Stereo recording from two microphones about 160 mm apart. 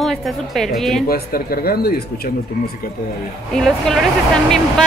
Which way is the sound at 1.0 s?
70° left (ahead or behind).